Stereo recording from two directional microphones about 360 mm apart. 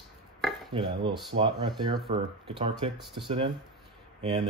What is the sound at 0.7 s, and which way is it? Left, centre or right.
Speech, centre.